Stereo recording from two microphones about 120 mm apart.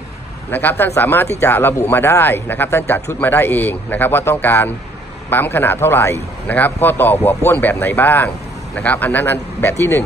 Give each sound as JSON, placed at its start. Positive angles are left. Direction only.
{"t": 0.5, "sound": "speech", "side_deg": 15}